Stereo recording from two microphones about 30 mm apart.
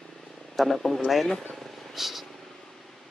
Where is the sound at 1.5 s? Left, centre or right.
Centre.